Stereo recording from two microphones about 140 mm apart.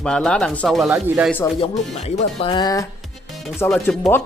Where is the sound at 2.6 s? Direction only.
25° left (ahead or behind).